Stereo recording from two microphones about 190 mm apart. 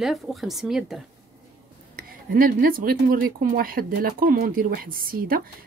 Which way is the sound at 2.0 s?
50° right (ahead or behind).